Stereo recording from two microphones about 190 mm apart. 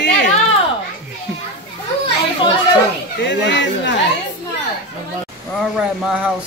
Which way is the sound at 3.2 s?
70° left (ahead or behind).